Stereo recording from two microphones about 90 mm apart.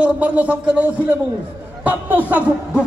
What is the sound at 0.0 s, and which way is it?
Speech, 15° right (ahead or behind).